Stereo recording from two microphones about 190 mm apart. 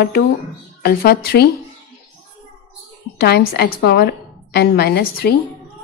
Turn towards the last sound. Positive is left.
turn(degrees=55)  # may be behind; listen again after turning